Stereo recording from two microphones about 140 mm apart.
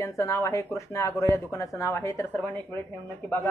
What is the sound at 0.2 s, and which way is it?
Speech, 20° left (ahead or behind).